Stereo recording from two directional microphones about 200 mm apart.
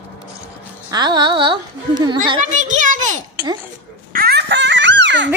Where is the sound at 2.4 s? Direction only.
35° right (ahead or behind).